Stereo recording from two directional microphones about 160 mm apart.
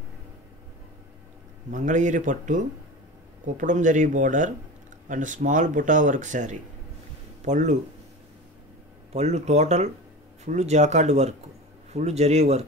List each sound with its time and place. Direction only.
1.7 s speech: 50° right (ahead or behind)
9.1 s speech: 45° right (ahead or behind)